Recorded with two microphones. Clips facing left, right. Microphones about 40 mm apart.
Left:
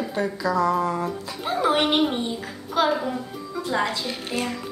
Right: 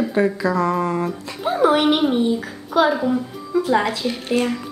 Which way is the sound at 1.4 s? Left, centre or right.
Centre.